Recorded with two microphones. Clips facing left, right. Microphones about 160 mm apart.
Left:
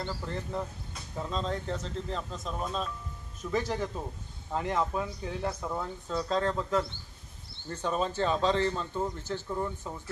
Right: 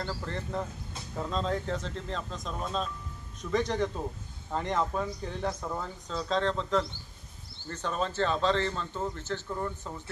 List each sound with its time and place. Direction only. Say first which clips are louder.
0.0 s a man's voice: even; centre (ahead or behind)